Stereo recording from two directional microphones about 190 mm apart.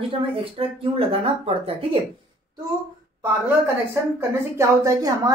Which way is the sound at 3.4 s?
10° right (ahead or behind).